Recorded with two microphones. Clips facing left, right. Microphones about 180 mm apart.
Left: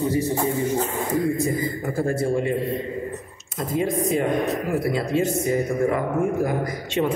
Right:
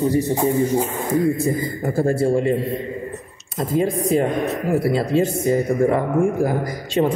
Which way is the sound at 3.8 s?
35° right (ahead or behind).